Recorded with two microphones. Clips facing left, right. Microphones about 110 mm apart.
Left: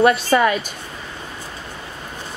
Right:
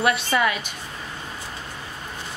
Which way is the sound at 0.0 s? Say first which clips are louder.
Left 6 dB; 40° left (ahead or behind).